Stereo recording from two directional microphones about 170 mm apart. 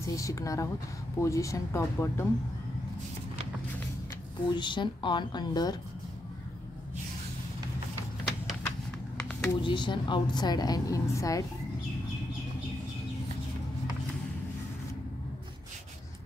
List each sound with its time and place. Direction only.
0.0 s speech: 20° left (ahead or behind)
4.5 s a woman's voice: 25° left (ahead or behind)
8.6 s a sound: 5° left (ahead or behind)
9.6 s a woman's voice: 30° left (ahead or behind)